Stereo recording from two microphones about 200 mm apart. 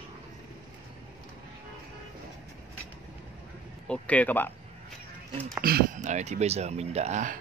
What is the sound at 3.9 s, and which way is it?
Speech, 5° left (ahead or behind).